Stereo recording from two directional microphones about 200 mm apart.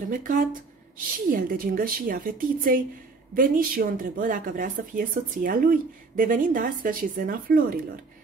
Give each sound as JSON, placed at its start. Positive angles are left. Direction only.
{"t": 0.1, "sound": "speech", "side_deg": -45}